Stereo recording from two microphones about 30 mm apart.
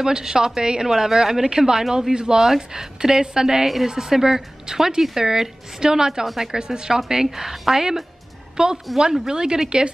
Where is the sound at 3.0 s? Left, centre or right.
Centre.